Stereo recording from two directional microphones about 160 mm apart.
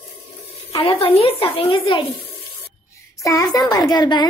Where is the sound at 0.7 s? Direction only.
35° left (ahead or behind).